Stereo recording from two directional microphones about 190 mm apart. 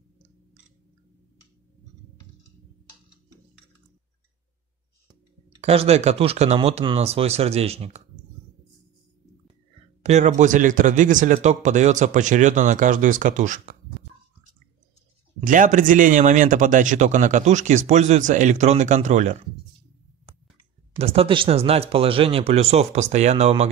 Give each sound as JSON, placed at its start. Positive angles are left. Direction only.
{"t": 5.6, "sound": "speech", "side_deg": -30}
{"t": 10.0, "sound": "speech", "side_deg": -40}
{"t": 15.4, "sound": "speech", "side_deg": -45}
{"t": 21.0, "sound": "speech", "side_deg": -30}